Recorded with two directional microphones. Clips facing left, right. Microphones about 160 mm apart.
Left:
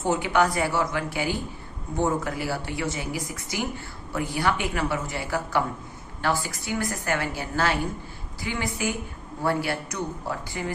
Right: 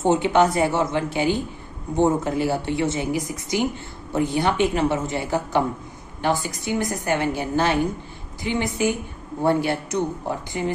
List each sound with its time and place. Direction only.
0.0 s speech: 25° right (ahead or behind)